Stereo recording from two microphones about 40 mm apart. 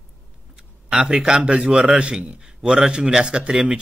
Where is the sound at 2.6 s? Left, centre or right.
Right.